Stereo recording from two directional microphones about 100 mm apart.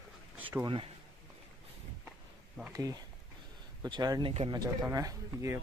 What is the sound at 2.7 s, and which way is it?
Speech, 35° right (ahead or behind).